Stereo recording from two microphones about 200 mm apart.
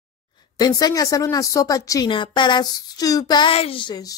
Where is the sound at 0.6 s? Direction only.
20° left (ahead or behind).